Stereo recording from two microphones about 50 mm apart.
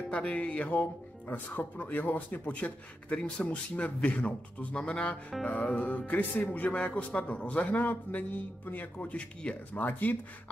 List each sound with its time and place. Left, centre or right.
0.1 s a man's voice: left
6.8 s a man's voice: left
10.0 s speech: left